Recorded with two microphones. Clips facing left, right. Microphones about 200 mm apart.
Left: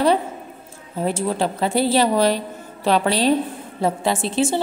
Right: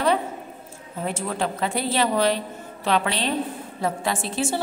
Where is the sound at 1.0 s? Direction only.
30° left (ahead or behind).